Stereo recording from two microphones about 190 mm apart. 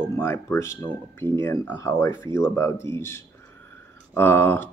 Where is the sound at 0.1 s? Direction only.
15° left (ahead or behind).